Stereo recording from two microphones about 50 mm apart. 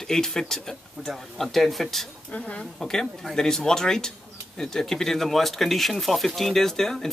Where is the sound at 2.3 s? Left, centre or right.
Left.